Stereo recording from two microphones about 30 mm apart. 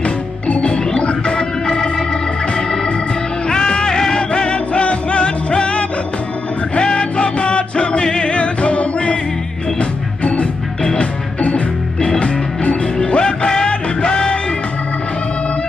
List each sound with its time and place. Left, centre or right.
0.6 s music: left
0.9 s organ: left
3.4 s music: left
9.8 s organ: left
11.0 s music: left